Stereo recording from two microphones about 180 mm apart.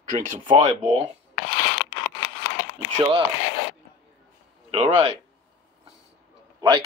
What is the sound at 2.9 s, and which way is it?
Cutlery, 30° right (ahead or behind).